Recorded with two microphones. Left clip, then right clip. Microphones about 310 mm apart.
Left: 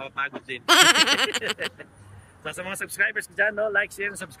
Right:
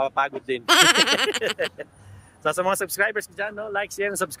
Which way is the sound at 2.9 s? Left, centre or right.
Centre.